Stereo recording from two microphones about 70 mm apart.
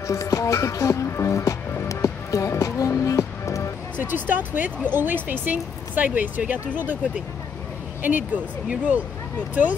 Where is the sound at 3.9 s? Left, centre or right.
Right.